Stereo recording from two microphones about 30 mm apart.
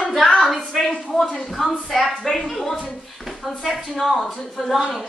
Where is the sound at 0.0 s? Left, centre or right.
Centre.